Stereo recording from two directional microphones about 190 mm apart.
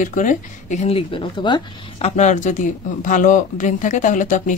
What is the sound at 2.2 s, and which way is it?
Speech, 40° left (ahead or behind).